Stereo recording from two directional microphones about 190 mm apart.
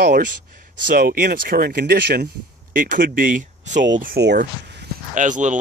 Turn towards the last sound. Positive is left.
turn(degrees=-40)  # may be behind; listen again after turning